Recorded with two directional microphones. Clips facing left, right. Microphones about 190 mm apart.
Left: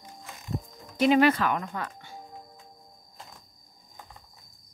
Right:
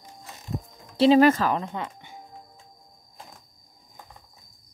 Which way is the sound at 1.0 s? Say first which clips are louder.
Right 4 dB; 35° right (ahead or behind).